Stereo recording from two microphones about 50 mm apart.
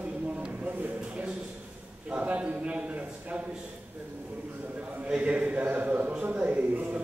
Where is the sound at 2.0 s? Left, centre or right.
Right.